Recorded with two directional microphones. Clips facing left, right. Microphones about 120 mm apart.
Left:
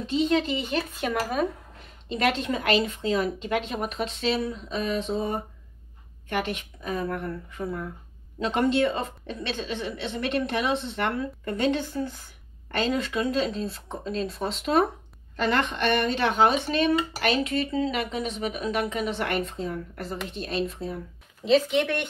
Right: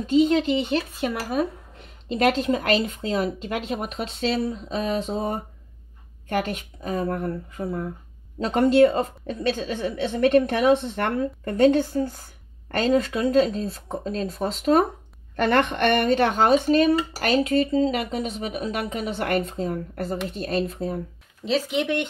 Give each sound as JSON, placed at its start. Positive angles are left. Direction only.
{"t": 1.0, "sound": "speech", "side_deg": -5}
{"t": 2.2, "sound": "speech", "side_deg": -30}
{"t": 6.2, "sound": "a woman's voice", "side_deg": -35}
{"t": 15.3, "sound": "speech", "side_deg": -55}
{"t": 21.5, "sound": "speech", "side_deg": -10}